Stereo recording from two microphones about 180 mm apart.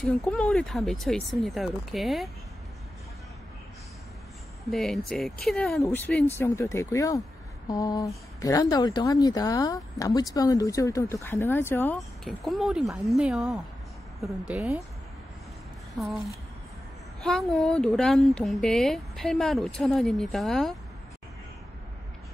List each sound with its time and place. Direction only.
0.2 s speech: 5° left (ahead or behind)
4.6 s speech: centre (ahead or behind)
12.0 s speech: centre (ahead or behind)
16.0 s speech: centre (ahead or behind)
17.2 s speech: centre (ahead or behind)